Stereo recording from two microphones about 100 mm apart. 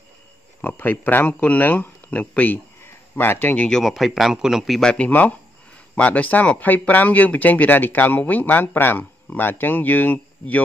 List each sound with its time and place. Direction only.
0.6 s speech: 15° left (ahead or behind); by 4.9 s centre (ahead or behind)
4.9 s speech: 15° left (ahead or behind)